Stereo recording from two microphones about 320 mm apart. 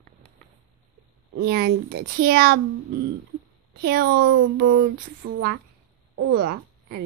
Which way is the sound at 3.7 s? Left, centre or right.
Right.